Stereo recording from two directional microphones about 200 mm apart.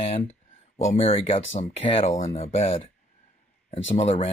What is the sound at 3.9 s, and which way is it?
Speech, 30° left (ahead or behind).